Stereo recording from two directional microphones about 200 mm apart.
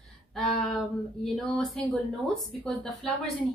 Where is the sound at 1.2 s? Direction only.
Centre (ahead or behind).